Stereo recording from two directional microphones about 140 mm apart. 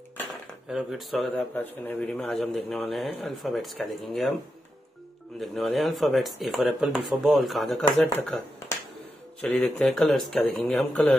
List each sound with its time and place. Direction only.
0.7 s speech: 5° right (ahead or behind)
1.5 s speech: 15° left (ahead or behind)
5.4 s speech: centre (ahead or behind)
8.0 s speech: 15° left (ahead or behind)